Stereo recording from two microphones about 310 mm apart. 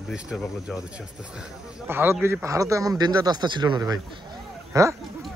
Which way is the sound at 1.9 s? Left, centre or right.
Centre.